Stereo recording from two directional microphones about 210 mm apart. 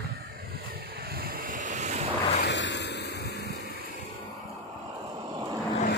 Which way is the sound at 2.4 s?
55° left (ahead or behind).